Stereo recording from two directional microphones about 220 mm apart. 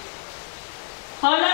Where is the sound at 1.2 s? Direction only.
15° left (ahead or behind).